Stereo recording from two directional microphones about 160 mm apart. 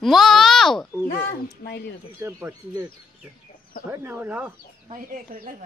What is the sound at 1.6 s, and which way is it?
Speech, 90° left.